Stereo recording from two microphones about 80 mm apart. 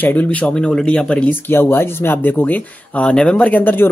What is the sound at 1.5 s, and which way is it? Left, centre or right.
Speech, left.